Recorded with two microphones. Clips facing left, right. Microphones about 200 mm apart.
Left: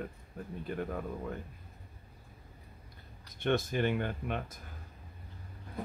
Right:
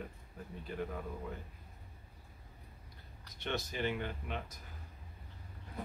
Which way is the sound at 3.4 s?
50° left (ahead or behind).